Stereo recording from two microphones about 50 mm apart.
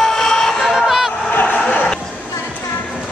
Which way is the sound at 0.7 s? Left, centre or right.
Centre.